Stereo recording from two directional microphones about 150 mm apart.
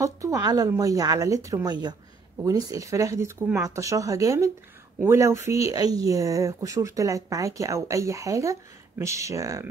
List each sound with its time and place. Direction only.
0.0 s speech: 20° right (ahead or behind)